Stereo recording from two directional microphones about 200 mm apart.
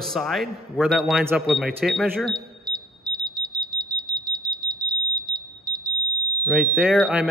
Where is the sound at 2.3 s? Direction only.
20° right (ahead or behind).